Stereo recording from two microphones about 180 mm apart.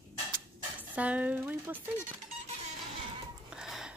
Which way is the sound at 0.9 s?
10° right (ahead or behind).